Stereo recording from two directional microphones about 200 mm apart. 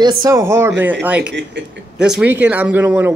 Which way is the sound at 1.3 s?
60° right (ahead or behind).